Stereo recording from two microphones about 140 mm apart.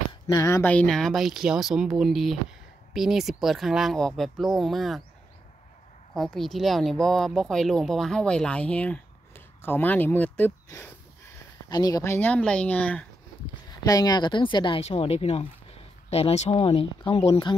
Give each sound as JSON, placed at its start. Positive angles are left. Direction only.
{"t": 0.3, "sound": "speech", "side_deg": 20}
{"t": 6.1, "sound": "speech", "side_deg": 0}
{"t": 11.7, "sound": "speech", "side_deg": 25}
{"t": 13.8, "sound": "a woman's voice", "side_deg": 25}
{"t": 14.8, "sound": "speech", "side_deg": 45}